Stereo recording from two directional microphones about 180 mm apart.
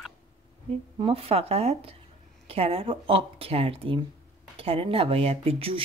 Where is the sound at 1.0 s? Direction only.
35° right (ahead or behind).